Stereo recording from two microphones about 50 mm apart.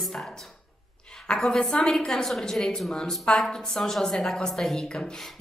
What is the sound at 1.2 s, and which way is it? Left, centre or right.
A woman's voice, centre.